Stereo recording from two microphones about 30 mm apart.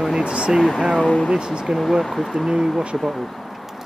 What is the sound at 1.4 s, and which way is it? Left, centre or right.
Speech, right.